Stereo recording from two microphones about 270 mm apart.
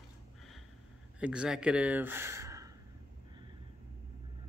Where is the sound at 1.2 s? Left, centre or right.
Centre.